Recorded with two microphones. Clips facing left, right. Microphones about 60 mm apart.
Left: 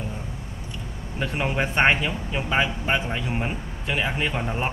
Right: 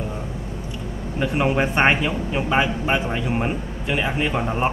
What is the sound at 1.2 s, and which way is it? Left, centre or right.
A man's voice, centre.